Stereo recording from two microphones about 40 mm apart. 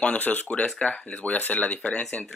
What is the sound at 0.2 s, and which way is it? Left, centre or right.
Speech, left.